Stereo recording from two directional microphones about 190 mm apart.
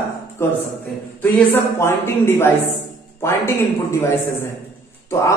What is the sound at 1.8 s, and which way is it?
Speech, 15° left (ahead or behind).